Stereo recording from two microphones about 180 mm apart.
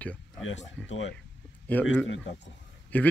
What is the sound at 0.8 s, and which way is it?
Speech, 90° left.